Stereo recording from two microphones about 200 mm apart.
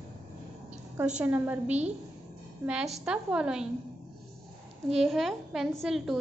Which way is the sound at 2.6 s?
5° right (ahead or behind).